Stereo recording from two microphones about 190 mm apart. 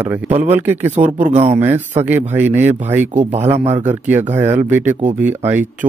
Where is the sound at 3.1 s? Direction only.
40° right (ahead or behind).